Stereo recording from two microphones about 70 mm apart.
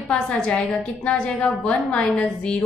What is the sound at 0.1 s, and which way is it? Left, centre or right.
A woman's voice, centre.